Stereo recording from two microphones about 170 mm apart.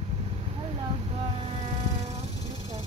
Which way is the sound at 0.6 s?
35° right (ahead or behind).